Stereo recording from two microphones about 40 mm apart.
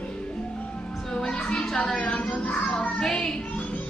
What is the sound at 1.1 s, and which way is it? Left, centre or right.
Music, left.